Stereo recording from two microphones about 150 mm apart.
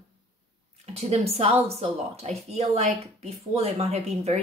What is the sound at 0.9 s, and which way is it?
Speech, 45° right (ahead or behind).